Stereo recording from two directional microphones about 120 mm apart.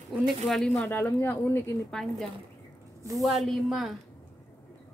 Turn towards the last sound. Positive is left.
turn(degrees=0)  # may be behind; listen again after turning